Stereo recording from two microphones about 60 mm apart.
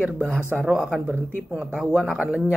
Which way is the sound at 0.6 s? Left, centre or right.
Centre.